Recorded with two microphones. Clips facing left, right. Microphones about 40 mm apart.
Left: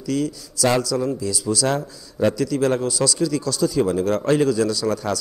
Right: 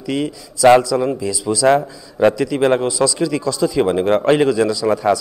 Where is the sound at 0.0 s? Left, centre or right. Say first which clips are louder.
Right 2 dB; right.